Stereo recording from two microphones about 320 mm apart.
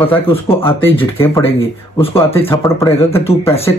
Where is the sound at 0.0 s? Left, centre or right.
Centre.